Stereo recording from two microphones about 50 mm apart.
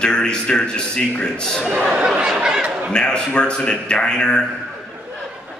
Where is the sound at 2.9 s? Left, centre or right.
Centre.